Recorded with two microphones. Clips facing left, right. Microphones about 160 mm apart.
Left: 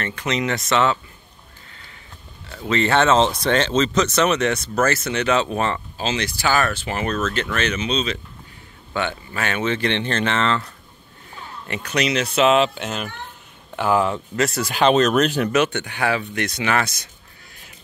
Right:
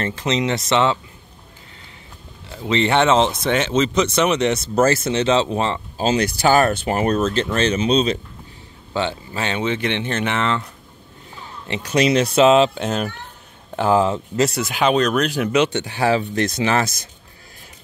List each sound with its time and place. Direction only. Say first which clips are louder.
0.2 s speech: right 1 dB; 20° right (ahead or behind)
2.5 s speech: right 1 dB; 20° right (ahead or behind)
4.7 s speech: right 6 dB; 30° right (ahead or behind)
5.9 s speech: right 6 dB; 40° right (ahead or behind)
8.9 s speech: right 2 dB; 25° right (ahead or behind)
11.6 s speech: right 5 dB; 25° right (ahead or behind)
14.7 s speech: left 5 dB; 5° right (ahead or behind)
15.5 s speech: right 2 dB; 20° right (ahead or behind)